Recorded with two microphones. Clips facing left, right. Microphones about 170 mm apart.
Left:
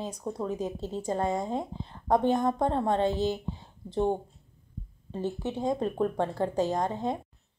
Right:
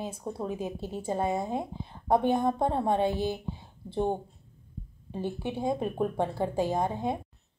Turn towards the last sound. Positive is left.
turn(degrees=-10)  # may be behind; listen again after turning